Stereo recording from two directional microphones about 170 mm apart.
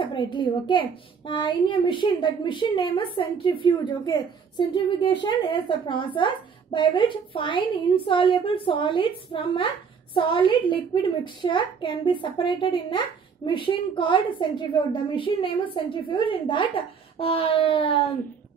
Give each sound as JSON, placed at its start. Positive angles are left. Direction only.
{"t": 0.0, "sound": "a woman's voice", "side_deg": 30}